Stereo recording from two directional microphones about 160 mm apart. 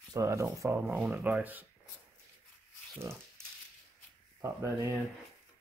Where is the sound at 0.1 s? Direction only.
20° right (ahead or behind).